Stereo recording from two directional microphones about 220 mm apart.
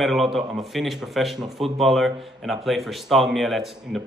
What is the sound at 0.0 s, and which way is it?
A man's voice, centre (ahead or behind).